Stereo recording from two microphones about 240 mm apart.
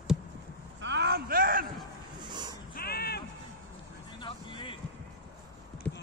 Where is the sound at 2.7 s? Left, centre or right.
Left.